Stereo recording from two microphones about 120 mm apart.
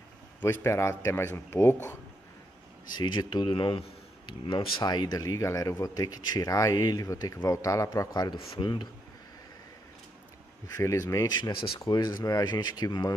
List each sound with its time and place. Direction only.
0.4 s speech: 20° left (ahead or behind)
3.0 s speech: 40° left (ahead or behind)
10.8 s speech: 25° left (ahead or behind); by 11.8 s 50° left (ahead or behind)
11.8 s speech: 35° left (ahead or behind)